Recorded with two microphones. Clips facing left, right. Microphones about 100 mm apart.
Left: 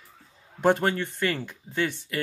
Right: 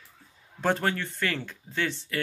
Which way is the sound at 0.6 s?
15° left (ahead or behind).